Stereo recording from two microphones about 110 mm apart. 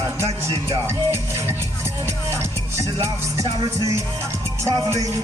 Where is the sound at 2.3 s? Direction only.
25° right (ahead or behind).